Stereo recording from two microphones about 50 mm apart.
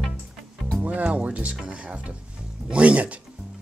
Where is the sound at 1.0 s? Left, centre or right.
Right.